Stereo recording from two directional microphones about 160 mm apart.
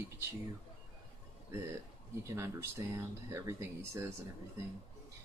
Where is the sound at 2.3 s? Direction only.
20° right (ahead or behind).